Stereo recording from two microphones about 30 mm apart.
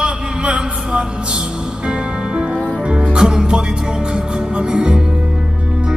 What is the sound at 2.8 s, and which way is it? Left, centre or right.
Music, right.